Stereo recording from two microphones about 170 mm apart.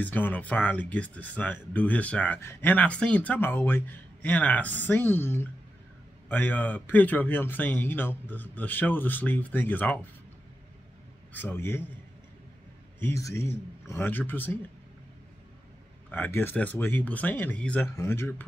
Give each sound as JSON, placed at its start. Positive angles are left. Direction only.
{"t": 0.0, "sound": "speech", "side_deg": 10}
{"t": 11.3, "sound": "speech", "side_deg": 15}
{"t": 13.0, "sound": "speech", "side_deg": 15}
{"t": 16.1, "sound": "speech", "side_deg": 10}